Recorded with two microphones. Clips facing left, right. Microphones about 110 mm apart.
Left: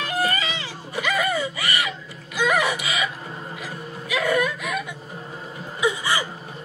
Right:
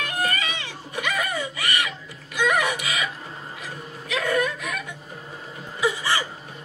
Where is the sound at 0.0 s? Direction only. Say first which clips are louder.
Left 2 dB; 30° left (ahead or behind).